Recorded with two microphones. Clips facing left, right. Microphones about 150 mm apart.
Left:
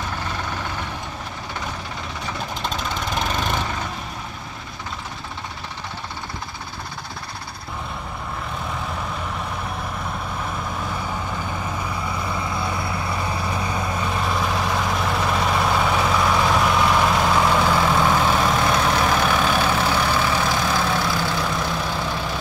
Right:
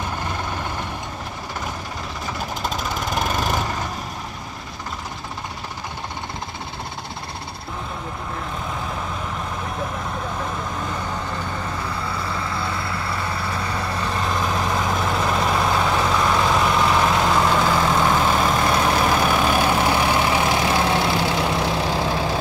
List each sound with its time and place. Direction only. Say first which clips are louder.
2.6 s vehicle: right 1 dB; 5° right (ahead or behind)
10.9 s vehicle: even; 10° left (ahead or behind); by 21.5 s 25° right (ahead or behind)
21.8 s vehicle: right 4 dB; 35° right (ahead or behind)